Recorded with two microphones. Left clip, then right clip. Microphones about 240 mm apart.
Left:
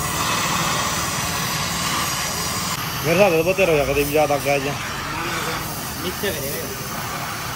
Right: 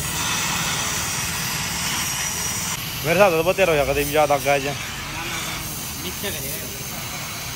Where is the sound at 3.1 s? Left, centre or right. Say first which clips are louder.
Even; centre.